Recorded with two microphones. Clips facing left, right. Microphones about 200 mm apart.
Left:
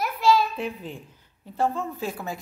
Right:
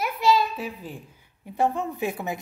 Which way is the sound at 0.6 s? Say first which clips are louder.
Left 2 dB; 5° right (ahead or behind).